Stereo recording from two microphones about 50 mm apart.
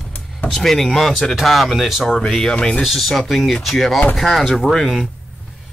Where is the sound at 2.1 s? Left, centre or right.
Centre.